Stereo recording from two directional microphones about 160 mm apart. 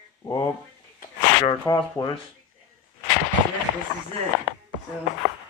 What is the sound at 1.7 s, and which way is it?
Speech, 20° left (ahead or behind).